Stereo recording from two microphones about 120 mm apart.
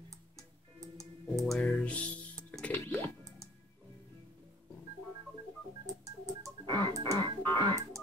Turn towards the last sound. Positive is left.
turn(degrees=-40)  # may be behind; listen again after turning